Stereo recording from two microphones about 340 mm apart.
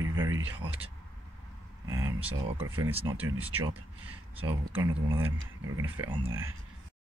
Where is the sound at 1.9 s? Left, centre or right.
Centre.